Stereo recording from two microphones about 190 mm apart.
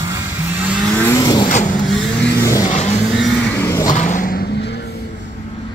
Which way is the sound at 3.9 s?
40° left (ahead or behind).